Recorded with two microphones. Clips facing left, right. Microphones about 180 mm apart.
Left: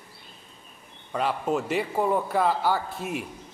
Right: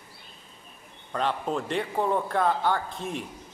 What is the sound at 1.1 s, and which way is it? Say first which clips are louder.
A man's voice: left 2 dB; 5° left (ahead or behind).